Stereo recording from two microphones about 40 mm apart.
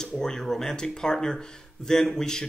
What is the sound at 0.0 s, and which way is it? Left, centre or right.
Speech, centre.